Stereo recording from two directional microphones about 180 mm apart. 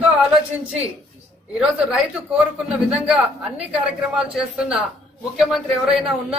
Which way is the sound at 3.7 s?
5° right (ahead or behind).